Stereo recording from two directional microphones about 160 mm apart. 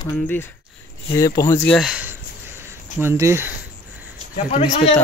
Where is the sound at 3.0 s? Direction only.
15° right (ahead or behind).